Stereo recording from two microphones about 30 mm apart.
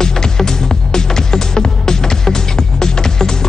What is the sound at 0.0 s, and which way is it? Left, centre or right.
Music, centre.